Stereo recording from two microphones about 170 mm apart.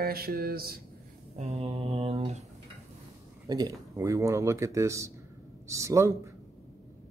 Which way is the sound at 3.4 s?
20° right (ahead or behind).